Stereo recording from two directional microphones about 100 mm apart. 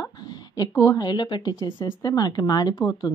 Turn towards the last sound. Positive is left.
turn(degrees=45)  # may be behind; listen again after turning